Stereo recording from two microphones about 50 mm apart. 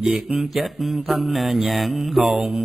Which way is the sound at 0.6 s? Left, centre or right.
Centre.